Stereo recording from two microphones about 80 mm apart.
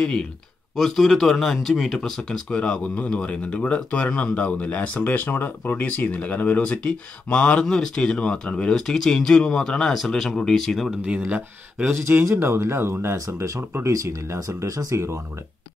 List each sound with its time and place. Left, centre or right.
0.0 s speech: centre
11.0 s speech: centre
11.9 s speech: right